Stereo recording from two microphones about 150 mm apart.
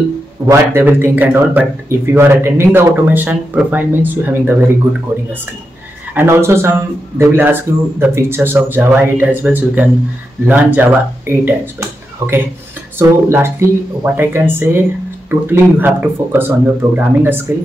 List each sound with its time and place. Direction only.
0.5 s speech: 15° right (ahead or behind)
6.1 s speech: 15° right (ahead or behind)